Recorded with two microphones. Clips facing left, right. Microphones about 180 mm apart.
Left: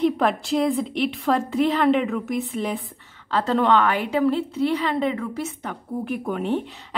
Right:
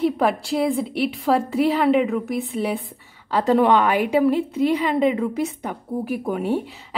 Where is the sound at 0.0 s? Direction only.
5° right (ahead or behind).